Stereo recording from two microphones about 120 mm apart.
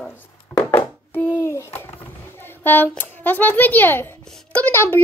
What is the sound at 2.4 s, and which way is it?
A child's voice, 15° left (ahead or behind).